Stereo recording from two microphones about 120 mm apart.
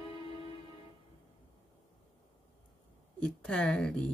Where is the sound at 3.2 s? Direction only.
10° left (ahead or behind).